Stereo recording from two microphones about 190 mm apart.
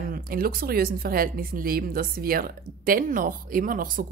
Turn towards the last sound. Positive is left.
turn(degrees=-45)  # may be behind; listen again after turning